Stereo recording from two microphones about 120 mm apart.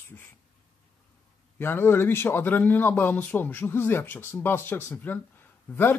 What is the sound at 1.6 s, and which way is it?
Speech, 20° left (ahead or behind).